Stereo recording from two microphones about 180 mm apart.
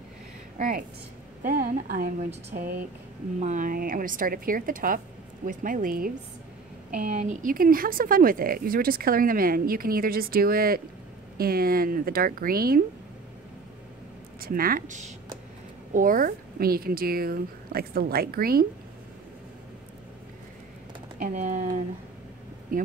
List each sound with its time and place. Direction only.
0.6 s speech: 50° right (ahead or behind)
7.2 s speech: 45° right (ahead or behind)
14.4 s speech: 50° right (ahead or behind)
21.2 s speech: 45° right (ahead or behind)